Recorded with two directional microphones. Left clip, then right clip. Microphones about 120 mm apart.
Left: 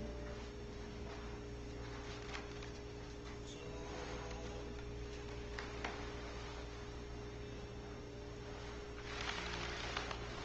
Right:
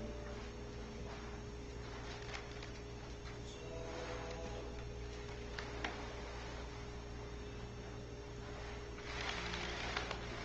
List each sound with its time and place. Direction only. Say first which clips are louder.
9.1 s vehicle: right 1 dB; 35° right (ahead or behind)